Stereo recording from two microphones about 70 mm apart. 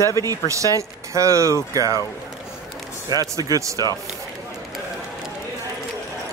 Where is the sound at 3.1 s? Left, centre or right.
Right.